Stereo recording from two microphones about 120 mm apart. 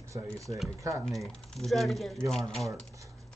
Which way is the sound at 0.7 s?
25° right (ahead or behind).